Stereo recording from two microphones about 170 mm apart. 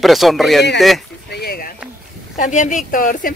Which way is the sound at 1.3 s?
65° left (ahead or behind).